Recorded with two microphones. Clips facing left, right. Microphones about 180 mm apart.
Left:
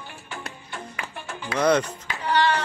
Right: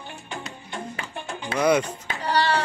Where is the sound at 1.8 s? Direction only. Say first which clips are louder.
Even; 35° right (ahead or behind).